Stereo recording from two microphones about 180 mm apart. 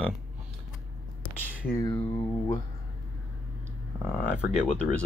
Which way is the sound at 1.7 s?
20° left (ahead or behind).